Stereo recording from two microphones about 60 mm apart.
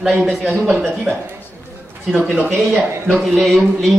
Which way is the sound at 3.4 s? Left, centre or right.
Centre.